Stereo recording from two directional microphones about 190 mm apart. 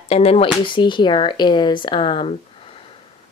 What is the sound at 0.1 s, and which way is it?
Speech, 30° left (ahead or behind).